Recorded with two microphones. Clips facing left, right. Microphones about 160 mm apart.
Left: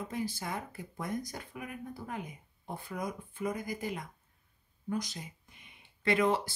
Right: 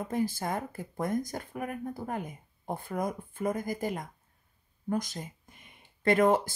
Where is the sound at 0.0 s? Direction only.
50° right (ahead or behind).